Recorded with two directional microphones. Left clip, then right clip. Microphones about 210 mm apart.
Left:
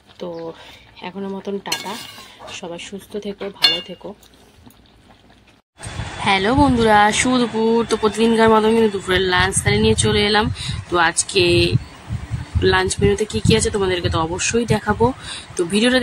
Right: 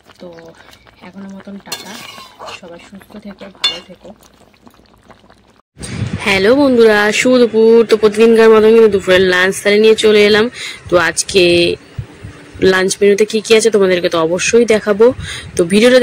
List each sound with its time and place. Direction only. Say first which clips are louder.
6.2 s speech: right 5 dB; 5° right (ahead or behind)